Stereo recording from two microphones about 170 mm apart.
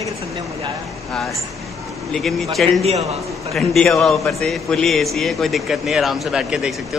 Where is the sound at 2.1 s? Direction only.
Centre (ahead or behind).